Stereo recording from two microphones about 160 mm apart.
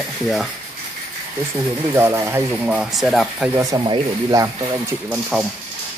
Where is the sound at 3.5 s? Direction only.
20° right (ahead or behind).